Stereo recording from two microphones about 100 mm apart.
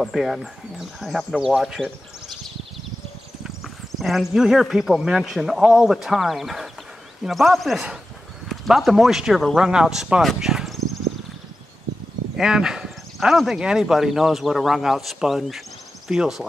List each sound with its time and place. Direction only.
0.0 s speech: centre (ahead or behind)
3.4 s speech: centre (ahead or behind)
10.2 s a sound: centre (ahead or behind)
12.4 s speech: 5° right (ahead or behind)